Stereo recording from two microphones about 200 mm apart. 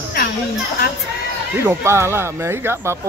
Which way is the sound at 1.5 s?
15° right (ahead or behind).